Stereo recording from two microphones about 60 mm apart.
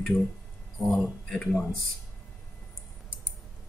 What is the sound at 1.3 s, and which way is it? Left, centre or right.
Speech, centre.